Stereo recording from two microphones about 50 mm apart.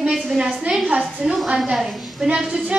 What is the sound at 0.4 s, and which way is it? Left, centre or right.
A woman's voice, centre.